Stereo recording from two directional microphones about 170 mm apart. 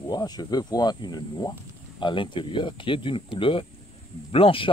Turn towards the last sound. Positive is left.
turn(degrees=30)  # may be behind; listen again after turning